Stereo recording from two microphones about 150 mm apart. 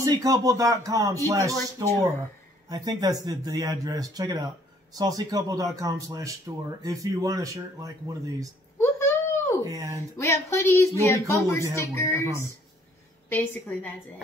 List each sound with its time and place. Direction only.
0.0 s speech: 25° right (ahead or behind)
8.7 s a sound: 15° left (ahead or behind)
9.6 s speech: 20° right (ahead or behind)
10.1 s a woman's voice: 20° left (ahead or behind)